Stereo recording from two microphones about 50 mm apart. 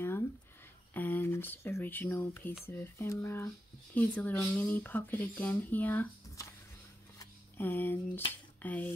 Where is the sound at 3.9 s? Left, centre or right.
Left.